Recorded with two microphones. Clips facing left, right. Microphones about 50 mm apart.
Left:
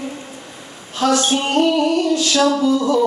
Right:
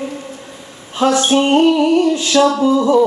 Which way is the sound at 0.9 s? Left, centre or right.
Right.